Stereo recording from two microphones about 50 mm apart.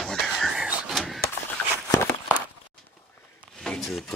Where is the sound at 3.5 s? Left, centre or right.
Centre.